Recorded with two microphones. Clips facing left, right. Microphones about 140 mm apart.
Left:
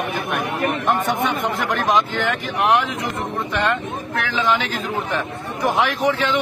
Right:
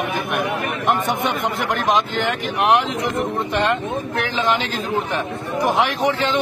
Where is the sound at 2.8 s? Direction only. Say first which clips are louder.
Right 3 dB; 25° right (ahead or behind).